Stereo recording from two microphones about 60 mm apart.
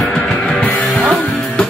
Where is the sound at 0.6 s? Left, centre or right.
Left.